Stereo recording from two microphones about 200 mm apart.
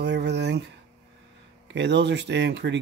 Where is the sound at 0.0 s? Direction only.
60° right (ahead or behind).